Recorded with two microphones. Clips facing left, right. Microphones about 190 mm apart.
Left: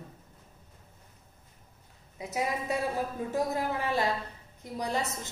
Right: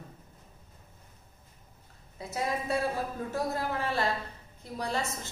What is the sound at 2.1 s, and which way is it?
A woman's voice, 15° left (ahead or behind).